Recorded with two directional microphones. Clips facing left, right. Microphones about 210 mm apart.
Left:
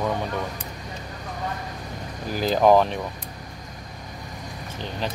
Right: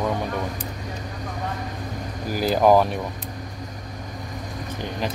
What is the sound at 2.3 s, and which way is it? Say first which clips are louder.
Speech: even; 5° right (ahead or behind).